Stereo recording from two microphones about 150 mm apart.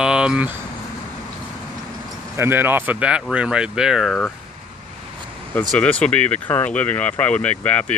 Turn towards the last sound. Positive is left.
turn(degrees=10)  # may be behind; listen again after turning